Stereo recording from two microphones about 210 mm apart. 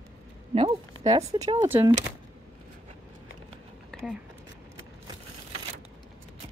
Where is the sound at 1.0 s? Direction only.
15° right (ahead or behind).